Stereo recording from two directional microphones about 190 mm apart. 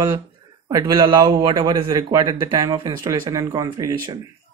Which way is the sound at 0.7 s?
20° right (ahead or behind).